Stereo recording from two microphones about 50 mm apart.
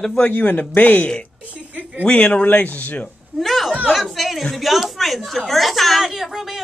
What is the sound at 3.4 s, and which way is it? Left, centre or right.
A woman's voice, centre.